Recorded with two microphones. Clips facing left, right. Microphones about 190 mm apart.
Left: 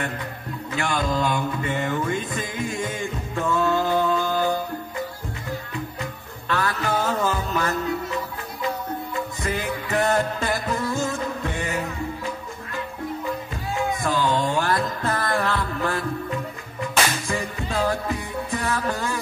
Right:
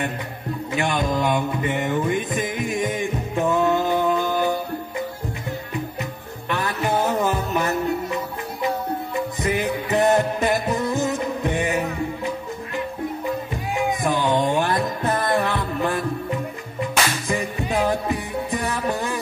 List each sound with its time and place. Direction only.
0.7 s music: 20° right (ahead or behind)
6.5 s music: 20° right (ahead or behind)
13.7 s music: 20° right (ahead or behind)